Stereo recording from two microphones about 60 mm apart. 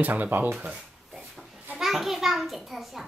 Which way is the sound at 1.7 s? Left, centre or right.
Centre.